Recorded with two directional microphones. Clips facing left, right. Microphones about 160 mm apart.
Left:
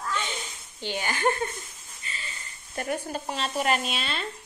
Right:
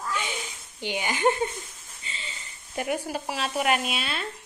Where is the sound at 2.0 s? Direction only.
25° right (ahead or behind).